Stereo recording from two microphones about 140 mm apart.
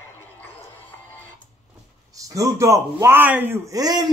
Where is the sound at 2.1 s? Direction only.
25° right (ahead or behind).